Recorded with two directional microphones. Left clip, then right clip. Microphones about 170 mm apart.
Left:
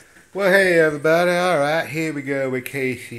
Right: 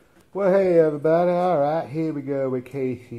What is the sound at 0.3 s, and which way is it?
Speech, 15° left (ahead or behind).